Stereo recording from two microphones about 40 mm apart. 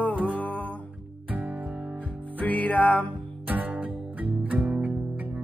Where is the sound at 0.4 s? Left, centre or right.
Left.